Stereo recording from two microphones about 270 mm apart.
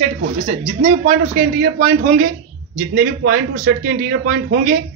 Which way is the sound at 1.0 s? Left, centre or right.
Right.